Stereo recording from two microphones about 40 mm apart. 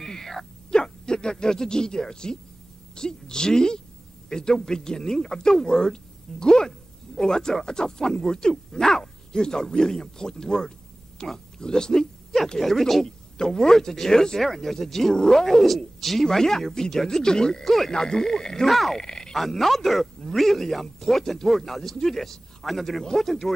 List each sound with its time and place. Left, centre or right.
0.0 s a sound: centre
0.7 s a man's voice: centre
12.5 s speech: centre
18.9 s speech: centre
19.3 s speech: centre